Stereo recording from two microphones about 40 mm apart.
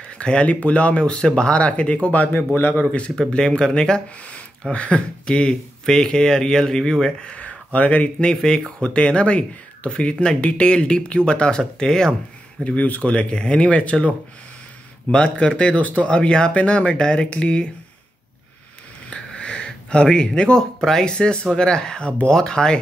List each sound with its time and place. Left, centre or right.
0.2 s speech: left
2.3 s a man's voice: left
3.2 s speech: centre
4.2 s a sound: left
4.7 s speech: left; by 7.2 s centre
7.3 s speech: left; by 12.2 s centre
12.6 s speech: left
19.0 s a sound: left
21.0 s speech: left